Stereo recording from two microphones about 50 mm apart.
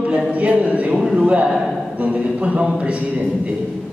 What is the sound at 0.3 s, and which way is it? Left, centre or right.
A man's voice, right.